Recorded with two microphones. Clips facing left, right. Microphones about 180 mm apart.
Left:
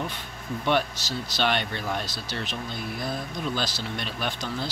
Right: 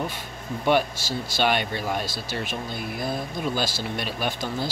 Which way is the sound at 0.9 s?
50° right (ahead or behind).